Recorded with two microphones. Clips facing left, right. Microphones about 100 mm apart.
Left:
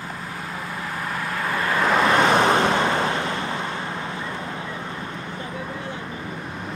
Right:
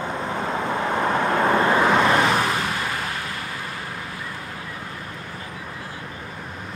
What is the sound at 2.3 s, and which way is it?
Vehicle, 30° left (ahead or behind).